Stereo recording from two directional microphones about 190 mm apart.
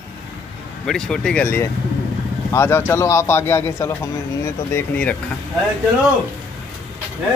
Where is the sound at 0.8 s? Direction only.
Centre (ahead or behind).